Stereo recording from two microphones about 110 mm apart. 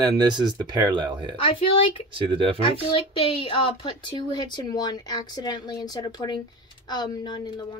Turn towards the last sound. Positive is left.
turn(degrees=40)  # may be behind; listen again after turning